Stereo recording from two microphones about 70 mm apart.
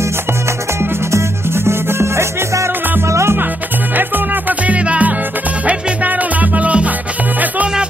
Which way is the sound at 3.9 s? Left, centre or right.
Right.